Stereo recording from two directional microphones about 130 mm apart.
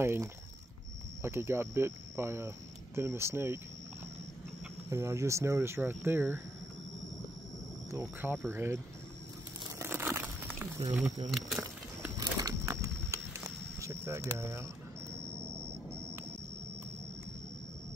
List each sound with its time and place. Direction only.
0.0 s speech: 20° right (ahead or behind)
4.8 s speech: 25° right (ahead or behind)
8.2 s speech: 15° right (ahead or behind)
9.8 s crumpling: 20° right (ahead or behind)
11.2 s speech: centre (ahead or behind)
11.6 s a sound: 25° right (ahead or behind)